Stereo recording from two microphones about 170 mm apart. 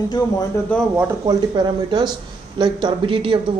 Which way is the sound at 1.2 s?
25° right (ahead or behind).